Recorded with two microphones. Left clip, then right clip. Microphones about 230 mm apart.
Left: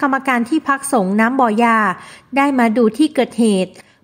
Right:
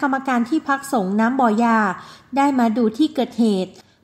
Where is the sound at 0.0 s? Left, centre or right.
Left.